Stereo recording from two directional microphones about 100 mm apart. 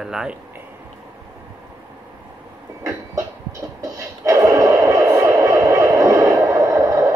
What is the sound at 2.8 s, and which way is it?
Music, 35° right (ahead or behind).